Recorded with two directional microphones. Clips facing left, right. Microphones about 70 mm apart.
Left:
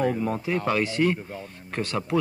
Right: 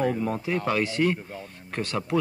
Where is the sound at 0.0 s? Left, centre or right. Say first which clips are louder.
Left 1 dB; centre.